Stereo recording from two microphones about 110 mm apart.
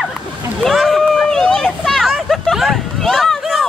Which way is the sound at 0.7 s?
Centre (ahead or behind).